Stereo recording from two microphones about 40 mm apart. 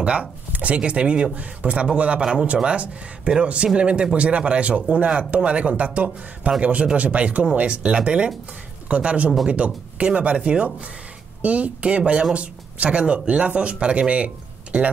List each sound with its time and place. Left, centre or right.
0.0 s speech: right